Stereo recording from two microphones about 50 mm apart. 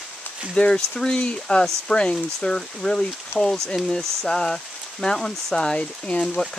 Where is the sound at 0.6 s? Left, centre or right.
Centre.